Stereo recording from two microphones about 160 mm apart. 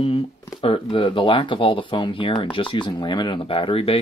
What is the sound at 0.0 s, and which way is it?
Speech, 35° left (ahead or behind).